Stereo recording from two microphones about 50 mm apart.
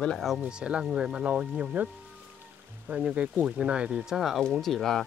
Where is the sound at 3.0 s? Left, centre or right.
Right.